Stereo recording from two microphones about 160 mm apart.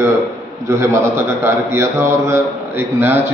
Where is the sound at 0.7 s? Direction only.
15° right (ahead or behind).